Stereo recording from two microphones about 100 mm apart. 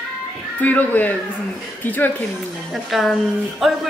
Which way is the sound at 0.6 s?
15° left (ahead or behind).